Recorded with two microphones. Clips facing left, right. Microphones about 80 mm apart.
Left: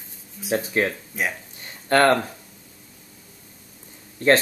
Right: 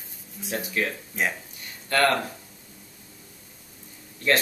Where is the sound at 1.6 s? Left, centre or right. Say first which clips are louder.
Left 5 dB; left.